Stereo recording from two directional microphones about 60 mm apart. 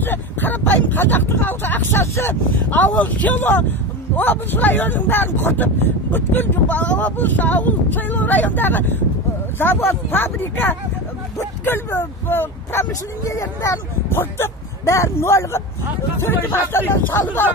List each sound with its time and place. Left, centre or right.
0.0 s speech: left
2.7 s speech: left
6.7 s speech: left
13.3 s speech: left